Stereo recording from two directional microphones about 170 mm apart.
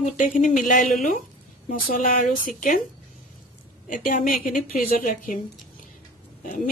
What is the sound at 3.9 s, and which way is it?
A woman's voice, 50° left (ahead or behind).